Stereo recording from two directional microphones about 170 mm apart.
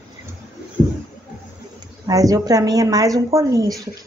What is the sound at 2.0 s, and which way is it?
A woman's voice, 20° right (ahead or behind).